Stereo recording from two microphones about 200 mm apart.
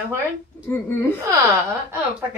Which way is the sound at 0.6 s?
10° left (ahead or behind).